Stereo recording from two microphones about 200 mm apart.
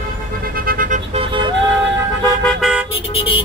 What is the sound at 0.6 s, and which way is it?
Vehicle, 45° right (ahead or behind).